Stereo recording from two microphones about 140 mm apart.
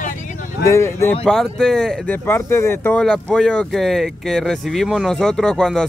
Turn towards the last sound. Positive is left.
turn(degrees=5)  # may be behind; listen again after turning